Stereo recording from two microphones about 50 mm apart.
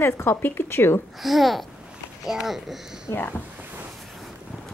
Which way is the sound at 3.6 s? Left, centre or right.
Right.